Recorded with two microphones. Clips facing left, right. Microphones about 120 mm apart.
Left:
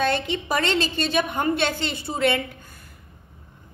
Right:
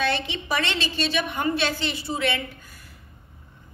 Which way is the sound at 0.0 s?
50° left (ahead or behind).